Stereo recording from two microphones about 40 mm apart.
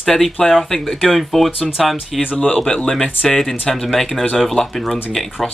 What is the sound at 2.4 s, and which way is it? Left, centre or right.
Speech, left.